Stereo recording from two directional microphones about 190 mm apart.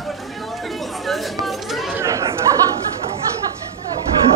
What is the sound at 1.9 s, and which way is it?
Chatter, 15° right (ahead or behind).